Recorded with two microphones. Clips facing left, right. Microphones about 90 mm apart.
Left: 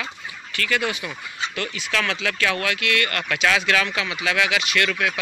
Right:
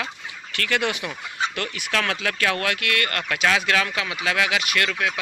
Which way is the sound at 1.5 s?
55° right (ahead or behind).